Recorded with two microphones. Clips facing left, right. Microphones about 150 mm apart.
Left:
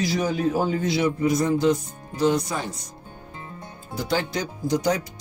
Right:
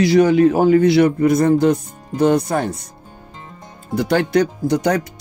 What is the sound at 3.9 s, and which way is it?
Speech, 65° right (ahead or behind).